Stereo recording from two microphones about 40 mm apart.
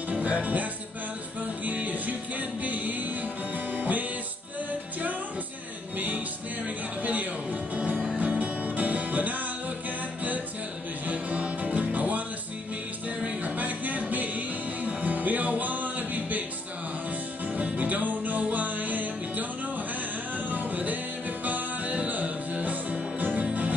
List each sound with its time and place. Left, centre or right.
0.1 s music: right
5.9 s music: right
11.1 s music: right
13.2 s music: right
17.6 s music: right